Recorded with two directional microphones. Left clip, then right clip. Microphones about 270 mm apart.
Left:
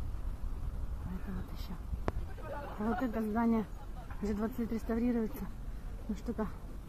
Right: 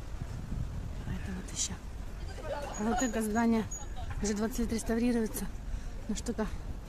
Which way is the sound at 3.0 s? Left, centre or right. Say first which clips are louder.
Right 2 dB; centre.